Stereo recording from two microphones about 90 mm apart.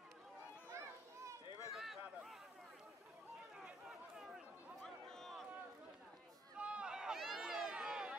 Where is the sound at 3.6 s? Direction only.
5° right (ahead or behind).